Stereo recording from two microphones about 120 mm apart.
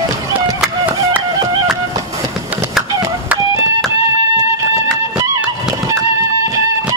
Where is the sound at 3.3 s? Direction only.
25° right (ahead or behind).